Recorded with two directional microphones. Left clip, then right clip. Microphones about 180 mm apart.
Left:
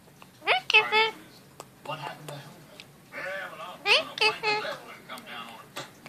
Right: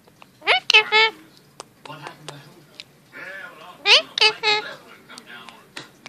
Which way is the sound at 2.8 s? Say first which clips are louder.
Even; 20° right (ahead or behind).